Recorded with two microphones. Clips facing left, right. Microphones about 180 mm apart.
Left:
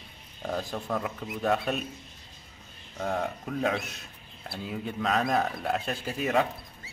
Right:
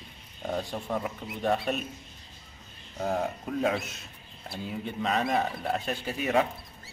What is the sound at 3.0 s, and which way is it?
Speech, 5° right (ahead or behind).